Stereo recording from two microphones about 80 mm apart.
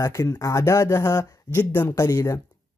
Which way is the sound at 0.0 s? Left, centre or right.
Left.